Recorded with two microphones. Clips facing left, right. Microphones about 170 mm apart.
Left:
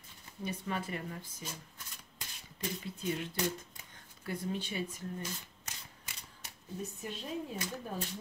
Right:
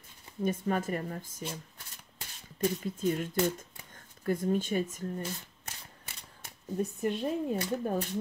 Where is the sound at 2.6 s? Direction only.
45° right (ahead or behind).